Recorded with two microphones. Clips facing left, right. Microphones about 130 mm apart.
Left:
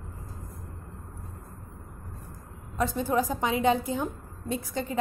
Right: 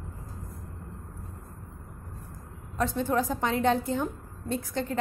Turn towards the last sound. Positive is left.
turn(degrees=5)  # may be behind; listen again after turning